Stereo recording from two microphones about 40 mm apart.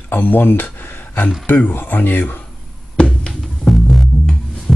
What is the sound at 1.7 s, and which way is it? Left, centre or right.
Speech, left.